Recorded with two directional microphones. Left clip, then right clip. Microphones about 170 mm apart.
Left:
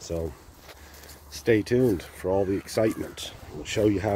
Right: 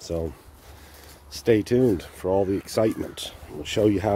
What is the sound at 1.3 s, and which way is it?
Speech, 20° right (ahead or behind).